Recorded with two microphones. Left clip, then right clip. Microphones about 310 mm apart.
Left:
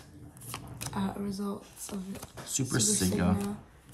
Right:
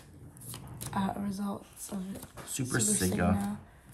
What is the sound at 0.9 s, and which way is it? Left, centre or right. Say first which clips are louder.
Speech: right 2 dB; right.